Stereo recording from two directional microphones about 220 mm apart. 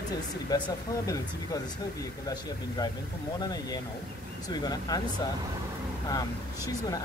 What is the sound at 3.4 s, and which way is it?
Speech, 15° left (ahead or behind).